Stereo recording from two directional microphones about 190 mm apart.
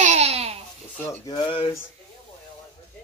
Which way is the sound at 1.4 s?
25° left (ahead or behind).